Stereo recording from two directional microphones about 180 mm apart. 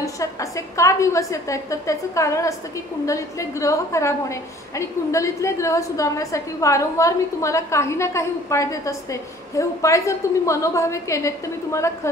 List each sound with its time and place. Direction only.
0.0 s a woman's voice: 15° left (ahead or behind)